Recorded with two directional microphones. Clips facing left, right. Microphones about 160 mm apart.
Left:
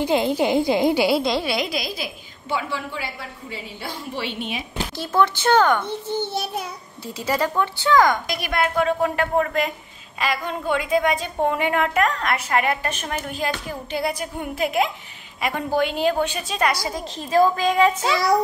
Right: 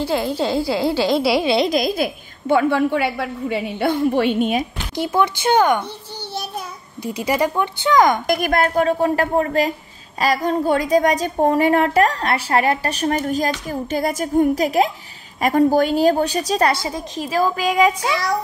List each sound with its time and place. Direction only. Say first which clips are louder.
0.0 s speech: left 1 dB; 20° left (ahead or behind)
1.4 s speech: right 7 dB; 25° right (ahead or behind)
1.7 s a woman's voice: right 9 dB; 50° right (ahead or behind)
4.9 s speech: right 2 dB; 15° right (ahead or behind)
7.2 s speech: right 3 dB; 15° right (ahead or behind)
8.3 s a woman's voice: right 6 dB; 45° right (ahead or behind)
17.1 s speech: left 2 dB; 10° right (ahead or behind)